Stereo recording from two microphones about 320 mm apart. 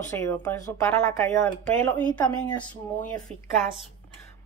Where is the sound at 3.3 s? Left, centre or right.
Centre.